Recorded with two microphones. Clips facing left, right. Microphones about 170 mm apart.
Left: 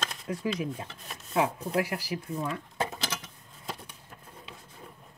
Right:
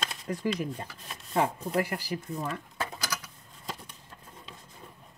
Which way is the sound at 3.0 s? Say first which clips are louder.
Left 1 dB; 25° left (ahead or behind).